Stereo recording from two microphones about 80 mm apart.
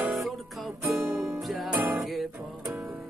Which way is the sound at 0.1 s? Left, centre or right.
Centre.